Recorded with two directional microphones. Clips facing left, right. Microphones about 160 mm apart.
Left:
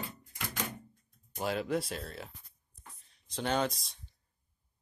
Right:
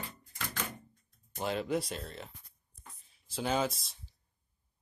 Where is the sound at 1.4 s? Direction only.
Centre (ahead or behind).